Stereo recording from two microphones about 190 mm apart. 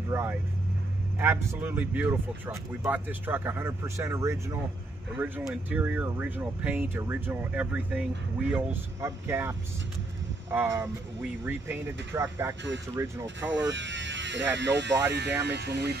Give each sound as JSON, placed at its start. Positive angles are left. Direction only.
{"t": 0.1, "sound": "speech", "side_deg": -15}
{"t": 13.5, "sound": "speech", "side_deg": -75}